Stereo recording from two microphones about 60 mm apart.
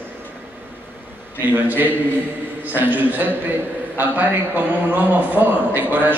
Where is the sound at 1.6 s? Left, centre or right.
Right.